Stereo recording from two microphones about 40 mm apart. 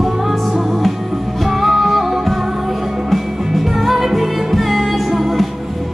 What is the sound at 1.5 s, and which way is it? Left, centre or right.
Music, centre.